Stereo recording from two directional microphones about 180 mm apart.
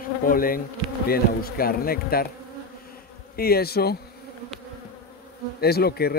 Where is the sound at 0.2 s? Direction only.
50° left (ahead or behind).